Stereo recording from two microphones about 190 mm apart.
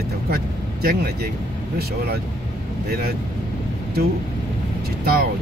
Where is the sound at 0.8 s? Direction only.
55° right (ahead or behind).